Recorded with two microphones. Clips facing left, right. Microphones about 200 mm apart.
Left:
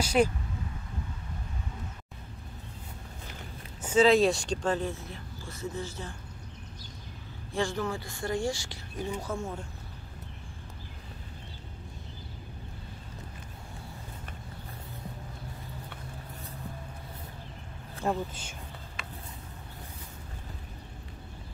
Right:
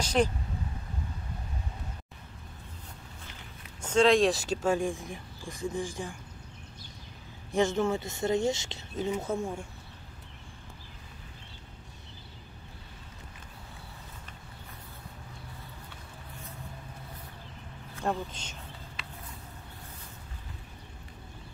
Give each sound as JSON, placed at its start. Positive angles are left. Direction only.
{"t": 0.0, "sound": "speech", "side_deg": 10}
{"t": 3.8, "sound": "speech", "side_deg": 5}
{"t": 7.5, "sound": "speech", "side_deg": -20}
{"t": 18.0, "sound": "speech", "side_deg": 10}
{"t": 19.0, "sound": "a sound", "side_deg": 50}